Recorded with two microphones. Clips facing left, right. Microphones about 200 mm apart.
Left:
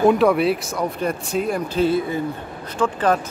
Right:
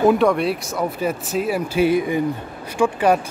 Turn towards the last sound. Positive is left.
turn(degrees=-10)  # may be behind; listen again after turning